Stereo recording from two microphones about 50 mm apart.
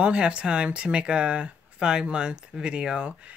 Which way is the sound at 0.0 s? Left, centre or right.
Centre.